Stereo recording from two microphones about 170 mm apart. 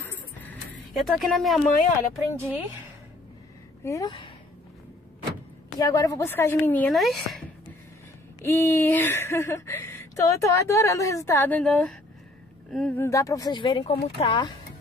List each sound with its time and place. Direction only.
0.0 s a sound: 10° left (ahead or behind)
0.9 s speech: centre (ahead or behind)
2.3 s speech: 10° right (ahead or behind)
3.8 s speech: 20° left (ahead or behind)
5.8 s speech: 20° left (ahead or behind); by 7.4 s centre (ahead or behind)
8.4 s speech: 15° left (ahead or behind)
13.0 s speech: 20° left (ahead or behind)